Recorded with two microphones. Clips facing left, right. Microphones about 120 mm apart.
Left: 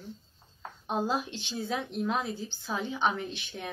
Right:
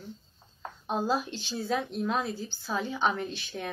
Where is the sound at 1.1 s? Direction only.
20° left (ahead or behind).